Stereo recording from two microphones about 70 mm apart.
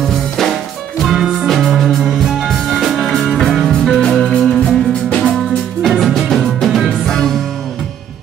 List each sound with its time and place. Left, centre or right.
0.0 s music: centre
1.0 s music: centre